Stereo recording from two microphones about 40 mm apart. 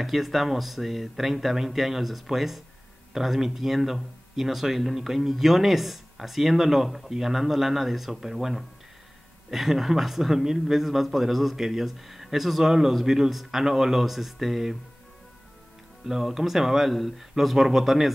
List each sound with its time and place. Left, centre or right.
0.0 s speech: centre
16.1 s speech: centre